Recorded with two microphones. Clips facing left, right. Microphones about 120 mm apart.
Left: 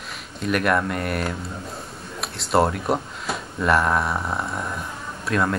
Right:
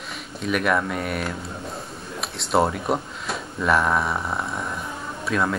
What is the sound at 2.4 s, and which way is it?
Speech, centre (ahead or behind).